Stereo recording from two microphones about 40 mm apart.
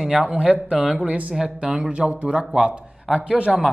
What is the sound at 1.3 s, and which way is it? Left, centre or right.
Speech, centre.